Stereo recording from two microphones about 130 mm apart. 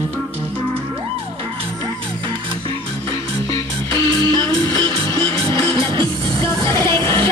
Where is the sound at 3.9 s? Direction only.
35° right (ahead or behind).